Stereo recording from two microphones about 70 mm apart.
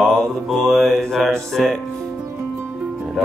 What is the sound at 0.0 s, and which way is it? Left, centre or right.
Mantra, centre.